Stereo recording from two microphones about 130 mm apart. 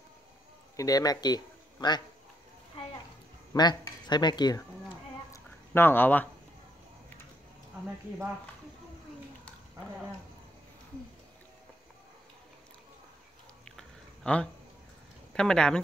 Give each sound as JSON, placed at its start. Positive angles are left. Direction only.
{"t": 0.7, "sound": "a man's voice", "side_deg": 30}
{"t": 3.5, "sound": "speech", "side_deg": 35}
{"t": 5.7, "sound": "speech", "side_deg": 15}
{"t": 13.7, "sound": "a sound", "side_deg": 5}
{"t": 15.3, "sound": "speech", "side_deg": 5}